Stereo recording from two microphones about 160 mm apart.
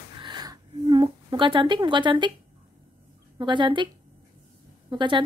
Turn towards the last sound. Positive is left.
turn(degrees=-30)  # may be behind; listen again after turning